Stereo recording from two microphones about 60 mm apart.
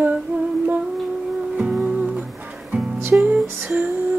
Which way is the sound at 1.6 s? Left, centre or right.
Centre.